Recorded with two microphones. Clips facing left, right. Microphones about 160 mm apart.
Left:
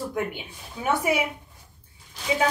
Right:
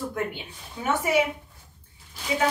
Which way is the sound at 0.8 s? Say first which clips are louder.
Right 1 dB; 10° left (ahead or behind).